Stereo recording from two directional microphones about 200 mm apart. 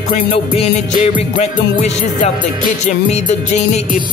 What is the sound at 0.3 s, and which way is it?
Music, 30° left (ahead or behind).